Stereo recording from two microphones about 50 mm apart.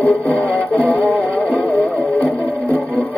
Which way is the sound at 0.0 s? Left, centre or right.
Left.